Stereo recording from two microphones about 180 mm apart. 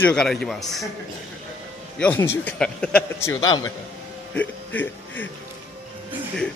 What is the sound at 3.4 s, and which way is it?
Speech, 20° left (ahead or behind).